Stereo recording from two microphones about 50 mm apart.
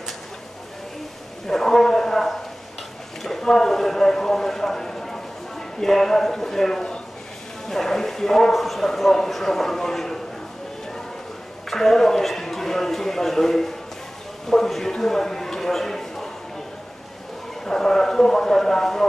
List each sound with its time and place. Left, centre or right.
1.5 s a sound: centre
3.3 s a man's voice: centre
11.7 s speech: centre
17.6 s speech: centre